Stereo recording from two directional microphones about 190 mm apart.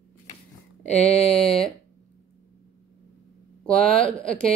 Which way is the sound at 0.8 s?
35° left (ahead or behind).